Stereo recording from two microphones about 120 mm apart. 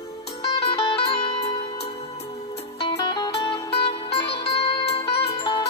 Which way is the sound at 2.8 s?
40° left (ahead or behind).